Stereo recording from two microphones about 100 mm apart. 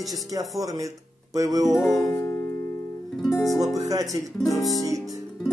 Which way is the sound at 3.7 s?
35° right (ahead or behind).